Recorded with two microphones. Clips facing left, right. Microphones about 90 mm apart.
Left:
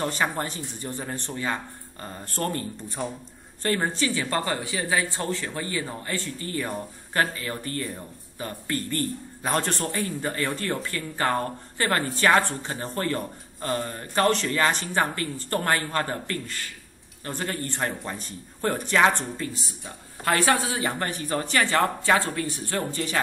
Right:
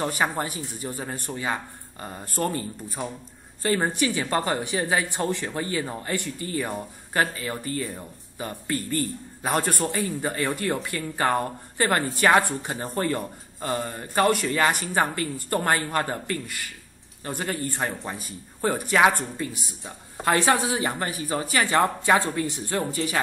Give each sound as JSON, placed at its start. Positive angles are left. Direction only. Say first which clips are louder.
{"t": 0.0, "sound": "a woman's voice", "louder": "right 1 dB", "side_deg": -15}